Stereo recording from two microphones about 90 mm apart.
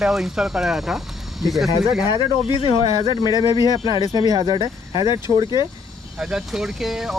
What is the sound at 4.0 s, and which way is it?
Speech, 45° left (ahead or behind).